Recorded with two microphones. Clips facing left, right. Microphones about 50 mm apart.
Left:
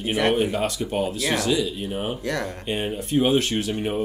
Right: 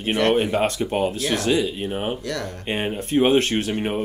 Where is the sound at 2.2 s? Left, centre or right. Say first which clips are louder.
Left 1 dB; left.